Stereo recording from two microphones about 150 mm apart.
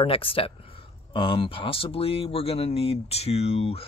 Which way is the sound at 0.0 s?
40° left (ahead or behind).